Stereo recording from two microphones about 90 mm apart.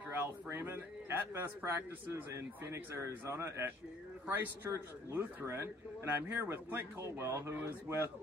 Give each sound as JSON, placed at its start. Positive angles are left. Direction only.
{"t": 0.1, "sound": "a man's voice", "side_deg": -25}